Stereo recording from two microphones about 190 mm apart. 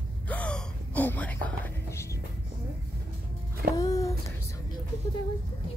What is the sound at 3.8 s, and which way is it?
Speech, 20° left (ahead or behind).